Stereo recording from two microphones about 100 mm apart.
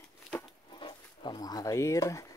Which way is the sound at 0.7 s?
55° left (ahead or behind).